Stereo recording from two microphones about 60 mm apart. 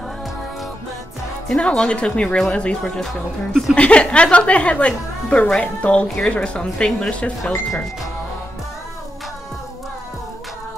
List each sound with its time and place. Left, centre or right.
1.5 s a woman's voice: centre